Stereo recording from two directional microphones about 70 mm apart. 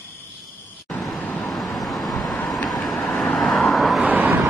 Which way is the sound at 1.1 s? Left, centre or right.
Centre.